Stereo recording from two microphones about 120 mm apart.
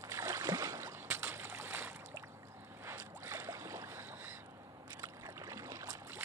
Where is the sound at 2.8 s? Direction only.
20° right (ahead or behind).